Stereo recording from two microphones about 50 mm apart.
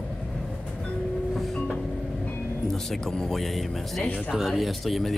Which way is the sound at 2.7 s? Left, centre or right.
Centre.